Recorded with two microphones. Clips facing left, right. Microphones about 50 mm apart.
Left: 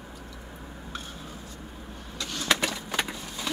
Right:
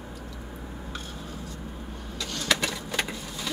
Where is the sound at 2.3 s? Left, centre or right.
Centre.